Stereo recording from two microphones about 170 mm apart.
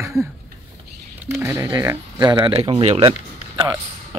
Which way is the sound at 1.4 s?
20° right (ahead or behind).